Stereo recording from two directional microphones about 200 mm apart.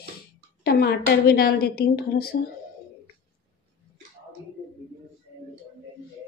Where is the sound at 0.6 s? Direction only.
55° left (ahead or behind).